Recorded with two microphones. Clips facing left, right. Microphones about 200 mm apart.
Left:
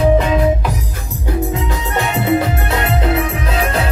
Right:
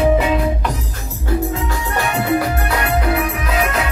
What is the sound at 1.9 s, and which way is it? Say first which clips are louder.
Music: left 2 dB; 25° left (ahead or behind).